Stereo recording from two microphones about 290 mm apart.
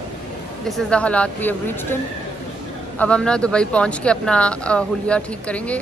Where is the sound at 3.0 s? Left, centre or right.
Centre.